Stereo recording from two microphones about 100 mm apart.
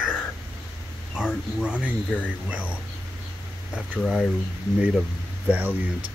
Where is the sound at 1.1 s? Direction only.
10° right (ahead or behind).